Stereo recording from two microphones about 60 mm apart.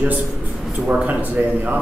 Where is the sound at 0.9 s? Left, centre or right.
Right.